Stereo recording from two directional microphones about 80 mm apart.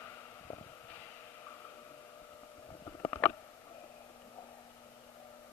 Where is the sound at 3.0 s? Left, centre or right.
Left.